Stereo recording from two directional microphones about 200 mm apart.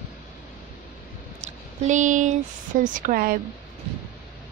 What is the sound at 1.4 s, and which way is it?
Speech, 35° right (ahead or behind).